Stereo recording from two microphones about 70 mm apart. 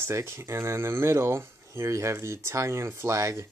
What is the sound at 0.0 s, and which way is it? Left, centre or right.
Speech, right.